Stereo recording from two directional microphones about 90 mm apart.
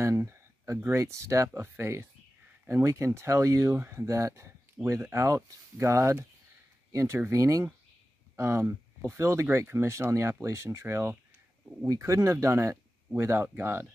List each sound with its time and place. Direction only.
0.0 s speech: 30° right (ahead or behind)